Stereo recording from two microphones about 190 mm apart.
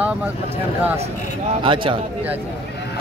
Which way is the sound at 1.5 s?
25° right (ahead or behind).